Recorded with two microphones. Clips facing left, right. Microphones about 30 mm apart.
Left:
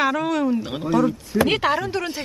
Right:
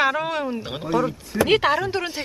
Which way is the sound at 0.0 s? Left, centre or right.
Centre.